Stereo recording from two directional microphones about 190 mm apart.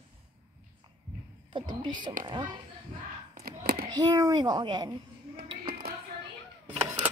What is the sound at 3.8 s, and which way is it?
Child singing, 20° right (ahead or behind).